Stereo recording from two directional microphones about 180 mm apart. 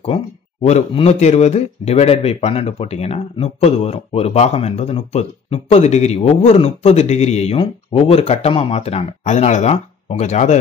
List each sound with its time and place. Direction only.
0.0 s speech: 35° left (ahead or behind)